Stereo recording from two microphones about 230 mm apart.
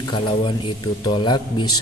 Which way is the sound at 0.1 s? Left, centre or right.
Left.